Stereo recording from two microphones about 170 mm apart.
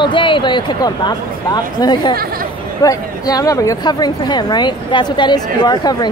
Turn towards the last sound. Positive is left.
turn(degrees=25)  # may be behind; listen again after turning